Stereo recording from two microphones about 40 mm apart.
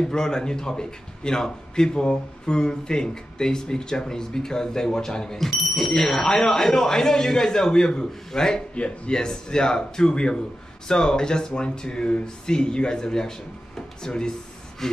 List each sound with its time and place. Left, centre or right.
0.0 s a man's voice: centre
5.6 s speech: centre
6.2 s a man's voice: centre
8.7 s a man's voice: left
14.8 s a sound: centre